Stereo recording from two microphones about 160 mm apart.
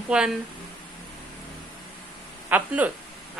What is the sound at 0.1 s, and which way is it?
Speech, 5° right (ahead or behind).